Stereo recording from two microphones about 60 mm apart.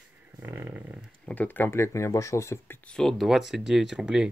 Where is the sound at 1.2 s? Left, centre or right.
Left.